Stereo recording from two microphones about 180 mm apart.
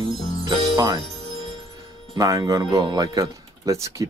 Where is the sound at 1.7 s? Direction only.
20° right (ahead or behind).